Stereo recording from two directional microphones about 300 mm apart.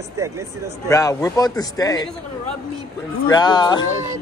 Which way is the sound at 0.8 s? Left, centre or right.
Centre.